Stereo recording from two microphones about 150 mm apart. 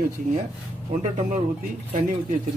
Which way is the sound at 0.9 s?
55° right (ahead or behind).